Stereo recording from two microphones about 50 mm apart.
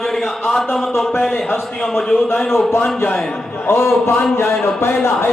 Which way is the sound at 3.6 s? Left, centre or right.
Left.